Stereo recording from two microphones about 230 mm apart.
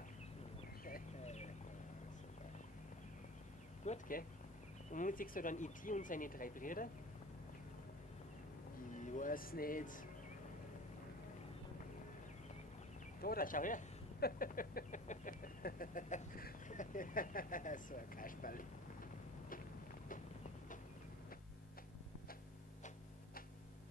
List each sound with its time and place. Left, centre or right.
0.8 s bird: left
3.8 s speech: left
8.9 s speech: left
13.2 s speech: left